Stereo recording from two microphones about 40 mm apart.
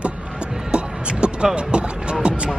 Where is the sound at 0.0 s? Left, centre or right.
Right.